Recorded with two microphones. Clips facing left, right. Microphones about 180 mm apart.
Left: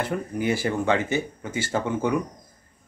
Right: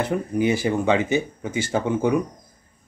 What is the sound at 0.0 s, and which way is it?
Speech, 20° right (ahead or behind).